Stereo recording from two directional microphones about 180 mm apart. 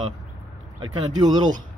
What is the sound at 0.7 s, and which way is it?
Speech, 25° right (ahead or behind).